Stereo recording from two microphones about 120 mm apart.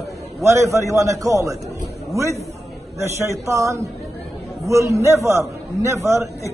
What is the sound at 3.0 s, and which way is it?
A man's voice, 25° right (ahead or behind).